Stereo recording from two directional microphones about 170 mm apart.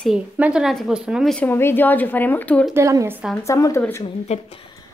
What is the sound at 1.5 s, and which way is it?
Speech, 15° left (ahead or behind).